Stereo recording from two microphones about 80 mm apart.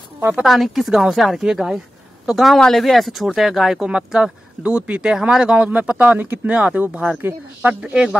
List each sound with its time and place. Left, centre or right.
0.4 s speech: centre; by 7.7 s right
7.8 s speech: centre